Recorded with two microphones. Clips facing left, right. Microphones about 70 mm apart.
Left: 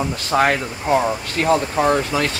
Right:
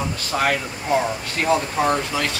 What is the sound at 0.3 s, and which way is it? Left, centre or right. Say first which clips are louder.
Speech: left 5 dB; left.